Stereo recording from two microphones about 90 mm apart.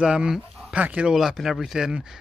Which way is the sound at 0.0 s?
10° right (ahead or behind).